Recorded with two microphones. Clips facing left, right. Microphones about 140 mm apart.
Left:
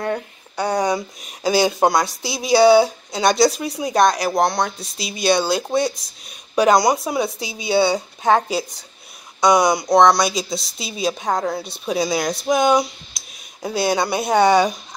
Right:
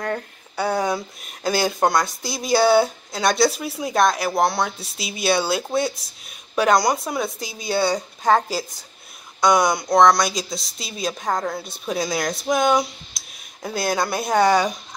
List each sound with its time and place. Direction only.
0.6 s speech: 5° right (ahead or behind)